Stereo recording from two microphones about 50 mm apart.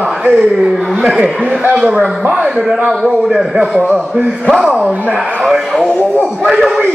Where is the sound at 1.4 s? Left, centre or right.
Right.